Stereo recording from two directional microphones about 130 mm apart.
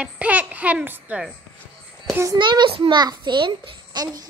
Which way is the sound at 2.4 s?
35° right (ahead or behind).